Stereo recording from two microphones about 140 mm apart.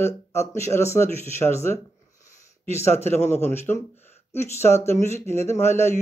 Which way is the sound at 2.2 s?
20° left (ahead or behind).